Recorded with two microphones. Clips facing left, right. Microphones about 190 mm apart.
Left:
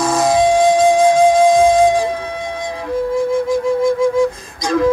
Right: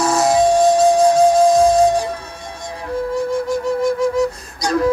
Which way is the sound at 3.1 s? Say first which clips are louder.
Left 4 dB; 90° left.